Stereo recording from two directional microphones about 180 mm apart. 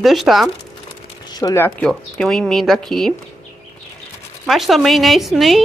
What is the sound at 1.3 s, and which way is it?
Speech, 20° left (ahead or behind).